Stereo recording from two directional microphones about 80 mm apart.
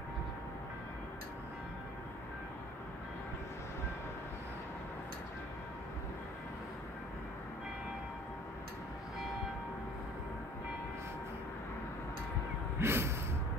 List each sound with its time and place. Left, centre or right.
12.7 s gasp: right